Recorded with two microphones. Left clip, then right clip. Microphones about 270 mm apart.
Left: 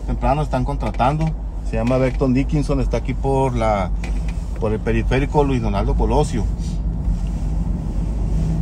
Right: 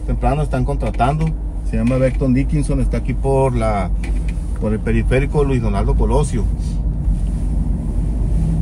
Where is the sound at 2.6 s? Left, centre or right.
Centre.